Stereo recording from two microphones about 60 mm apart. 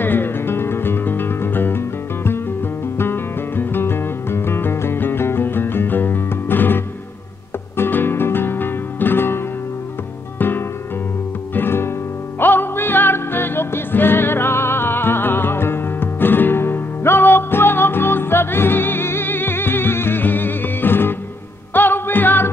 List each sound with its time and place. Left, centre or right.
0.0 s music: left
11.5 s guitar: left
12.4 s music: left